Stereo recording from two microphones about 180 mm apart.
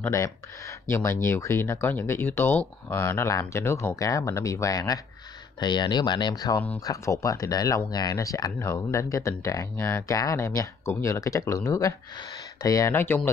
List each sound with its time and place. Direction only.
0.0 s speech: 15° left (ahead or behind)